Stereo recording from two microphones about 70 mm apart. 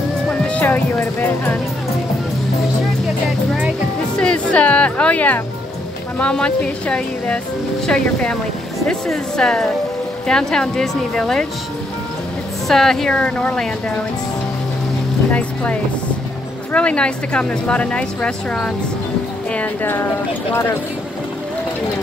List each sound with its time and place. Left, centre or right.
0.3 s speech: left
4.2 s a woman's voice: centre
12.6 s a woman's voice: centre
15.3 s a woman's voice: centre
19.5 s speech: left